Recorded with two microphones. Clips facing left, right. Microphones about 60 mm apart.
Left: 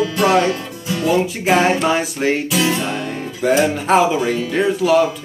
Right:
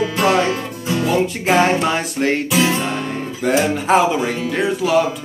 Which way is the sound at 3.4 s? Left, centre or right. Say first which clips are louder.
Left 2 dB; centre.